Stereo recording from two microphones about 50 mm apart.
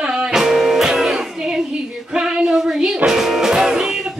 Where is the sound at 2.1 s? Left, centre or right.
Centre.